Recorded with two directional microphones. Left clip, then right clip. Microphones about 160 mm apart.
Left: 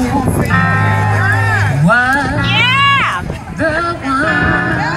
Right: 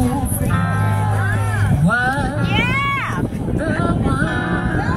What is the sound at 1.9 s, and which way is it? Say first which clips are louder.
Music: left 7 dB; 20° right (ahead or behind).